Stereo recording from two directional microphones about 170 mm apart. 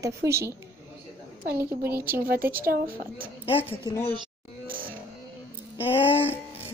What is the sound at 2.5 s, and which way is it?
Speech, 60° right (ahead or behind).